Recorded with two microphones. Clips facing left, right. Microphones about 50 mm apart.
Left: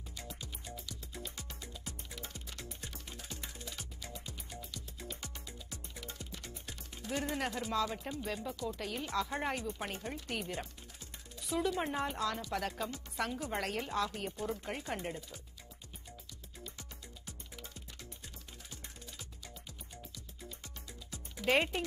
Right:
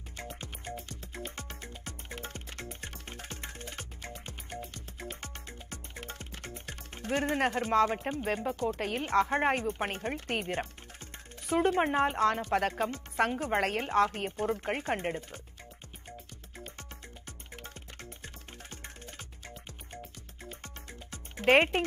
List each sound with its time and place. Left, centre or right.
0.1 s music: right
11.3 s speech: right
16.1 s music: right